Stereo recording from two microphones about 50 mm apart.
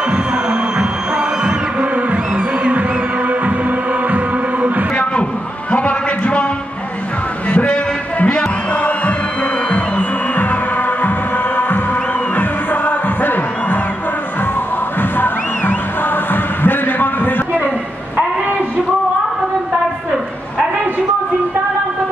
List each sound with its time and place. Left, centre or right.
0.1 s music: centre
2.3 s music: centre
4.1 s music: right
5.7 s a sound: left
7.5 s music: left
12.4 s music: left
15.0 s music: left
16.6 s a sound: left